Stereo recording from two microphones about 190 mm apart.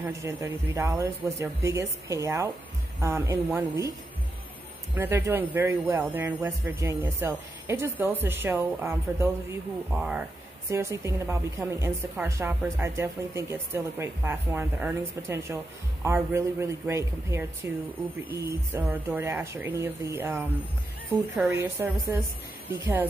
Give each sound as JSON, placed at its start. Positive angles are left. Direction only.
{"t": 0.0, "sound": "a woman's voice", "side_deg": -15}
{"t": 4.9, "sound": "a woman's voice", "side_deg": -15}